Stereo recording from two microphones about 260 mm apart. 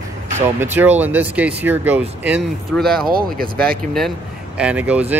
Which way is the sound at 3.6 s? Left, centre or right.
Centre.